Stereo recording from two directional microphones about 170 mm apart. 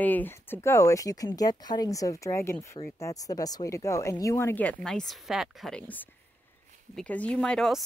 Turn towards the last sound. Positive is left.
turn(degrees=5)  # may be behind; listen again after turning